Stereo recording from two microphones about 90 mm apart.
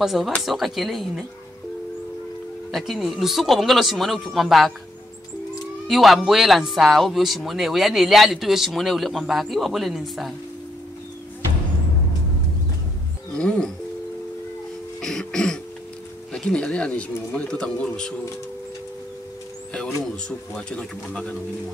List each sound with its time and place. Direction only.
0.0 s speech: 5° right (ahead or behind)
2.7 s speech: centre (ahead or behind)
5.9 s speech: centre (ahead or behind)
13.3 s music: 10° left (ahead or behind)
15.0 s throat clearing: 5° left (ahead or behind)
16.3 s speech: 10° left (ahead or behind)
20.2 s speech: 10° left (ahead or behind)